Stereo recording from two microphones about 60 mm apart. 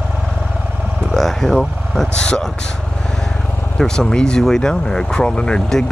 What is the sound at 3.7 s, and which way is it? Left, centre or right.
Speech, centre.